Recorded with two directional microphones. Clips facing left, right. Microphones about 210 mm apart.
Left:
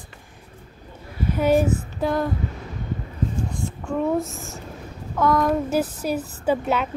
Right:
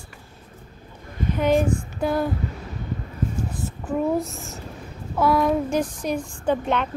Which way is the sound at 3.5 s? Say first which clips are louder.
Even; 5° right (ahead or behind).